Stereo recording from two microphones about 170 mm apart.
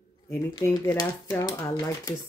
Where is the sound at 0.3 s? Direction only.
20° left (ahead or behind).